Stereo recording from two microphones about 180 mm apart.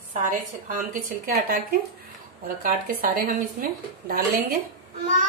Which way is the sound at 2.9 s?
55° right (ahead or behind).